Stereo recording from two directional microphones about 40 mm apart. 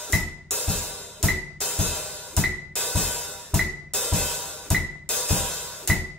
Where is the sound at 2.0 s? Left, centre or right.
Left.